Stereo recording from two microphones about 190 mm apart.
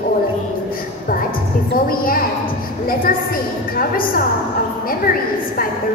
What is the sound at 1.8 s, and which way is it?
A woman's voice, 50° left (ahead or behind).